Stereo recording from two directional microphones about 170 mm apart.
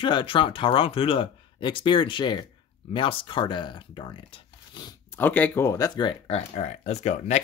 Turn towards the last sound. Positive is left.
turn(degrees=45)  # may be behind; listen again after turning